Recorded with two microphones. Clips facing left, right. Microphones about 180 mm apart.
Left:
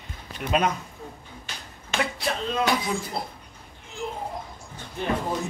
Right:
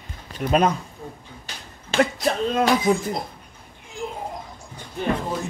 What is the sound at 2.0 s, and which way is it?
Speech, 50° right (ahead or behind).